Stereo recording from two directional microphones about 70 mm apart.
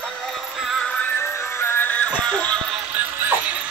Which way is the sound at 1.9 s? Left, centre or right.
Centre.